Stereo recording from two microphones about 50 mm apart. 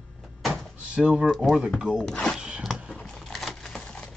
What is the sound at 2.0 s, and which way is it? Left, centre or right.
Speech, centre.